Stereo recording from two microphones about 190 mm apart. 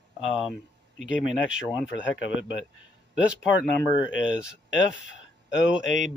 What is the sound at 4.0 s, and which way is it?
Speech, 75° left (ahead or behind).